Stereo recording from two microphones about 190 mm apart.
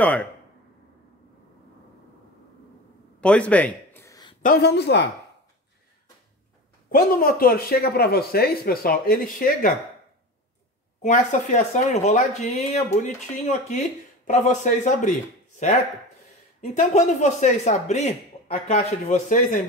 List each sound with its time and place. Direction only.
0.0 s speech: 5° left (ahead or behind)
3.2 s a sound: 5° left (ahead or behind)
4.4 s speech: 55° left (ahead or behind)
6.9 s speech: 50° left (ahead or behind)
11.0 s speech: 40° left (ahead or behind)